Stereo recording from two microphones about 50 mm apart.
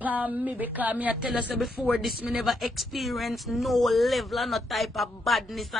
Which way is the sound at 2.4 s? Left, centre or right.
Centre.